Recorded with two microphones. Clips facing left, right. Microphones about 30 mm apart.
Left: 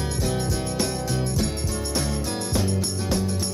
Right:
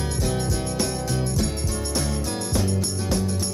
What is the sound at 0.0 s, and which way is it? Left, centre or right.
Music, centre.